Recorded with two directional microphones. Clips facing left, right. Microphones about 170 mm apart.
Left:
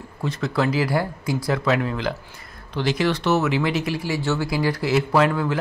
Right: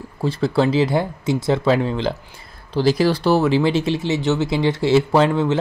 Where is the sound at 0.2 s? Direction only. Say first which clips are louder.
Right 5 dB; 30° right (ahead or behind).